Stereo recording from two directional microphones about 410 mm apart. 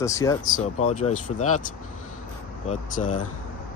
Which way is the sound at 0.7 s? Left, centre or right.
Left.